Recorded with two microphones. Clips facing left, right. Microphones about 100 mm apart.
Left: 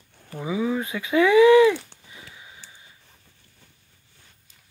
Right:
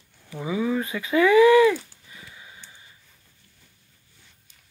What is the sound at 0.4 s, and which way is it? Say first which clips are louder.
Speech: even; 10° left (ahead or behind).